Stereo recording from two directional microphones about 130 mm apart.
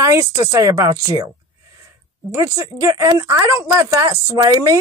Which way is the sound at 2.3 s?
20° right (ahead or behind).